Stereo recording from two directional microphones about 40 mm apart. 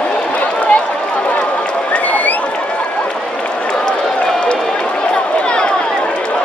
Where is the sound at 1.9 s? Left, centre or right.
Left.